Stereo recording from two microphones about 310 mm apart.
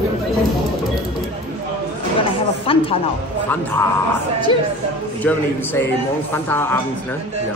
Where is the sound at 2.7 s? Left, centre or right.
Centre.